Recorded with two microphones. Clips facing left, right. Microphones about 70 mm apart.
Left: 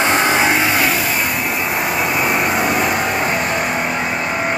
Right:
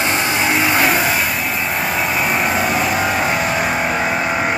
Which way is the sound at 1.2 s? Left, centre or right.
Centre.